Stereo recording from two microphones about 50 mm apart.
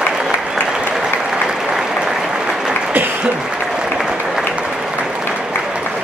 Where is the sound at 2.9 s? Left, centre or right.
Right.